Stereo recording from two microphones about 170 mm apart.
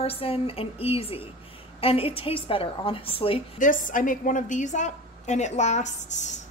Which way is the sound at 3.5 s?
50° left (ahead or behind).